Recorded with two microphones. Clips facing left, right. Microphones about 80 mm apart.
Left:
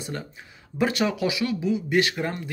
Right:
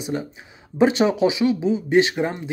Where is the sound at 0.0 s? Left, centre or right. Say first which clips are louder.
Right 7 dB; centre.